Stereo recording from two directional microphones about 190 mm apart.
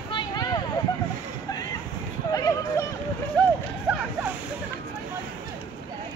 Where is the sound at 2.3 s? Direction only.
15° left (ahead or behind).